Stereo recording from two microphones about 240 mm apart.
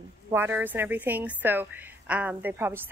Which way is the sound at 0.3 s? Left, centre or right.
Centre.